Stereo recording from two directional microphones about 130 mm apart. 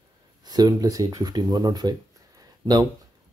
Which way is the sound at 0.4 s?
30° right (ahead or behind).